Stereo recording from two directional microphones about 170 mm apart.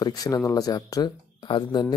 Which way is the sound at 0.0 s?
20° left (ahead or behind).